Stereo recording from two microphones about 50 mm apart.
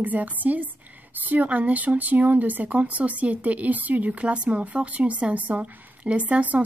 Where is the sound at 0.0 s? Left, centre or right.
Right.